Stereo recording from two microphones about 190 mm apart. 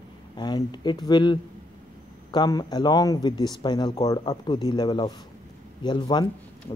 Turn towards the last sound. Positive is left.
turn(degrees=25)  # may be behind; listen again after turning